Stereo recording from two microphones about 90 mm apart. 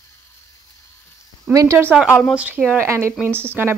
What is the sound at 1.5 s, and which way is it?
Speech, 40° right (ahead or behind).